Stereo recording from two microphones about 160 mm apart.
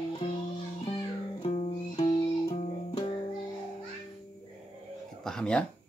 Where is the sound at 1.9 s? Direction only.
35° left (ahead or behind).